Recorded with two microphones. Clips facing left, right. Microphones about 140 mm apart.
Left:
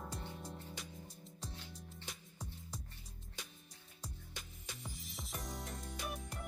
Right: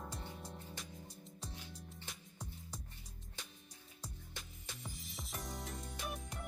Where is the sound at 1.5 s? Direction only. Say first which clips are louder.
Even; 10° right (ahead or behind).